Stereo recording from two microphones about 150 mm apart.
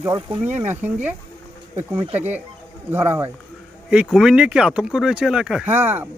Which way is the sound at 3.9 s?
5° right (ahead or behind).